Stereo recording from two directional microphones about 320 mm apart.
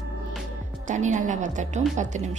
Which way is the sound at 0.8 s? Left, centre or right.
Right.